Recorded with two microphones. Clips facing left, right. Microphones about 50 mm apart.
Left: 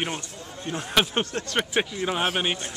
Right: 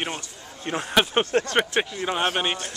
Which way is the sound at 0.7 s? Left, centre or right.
Right.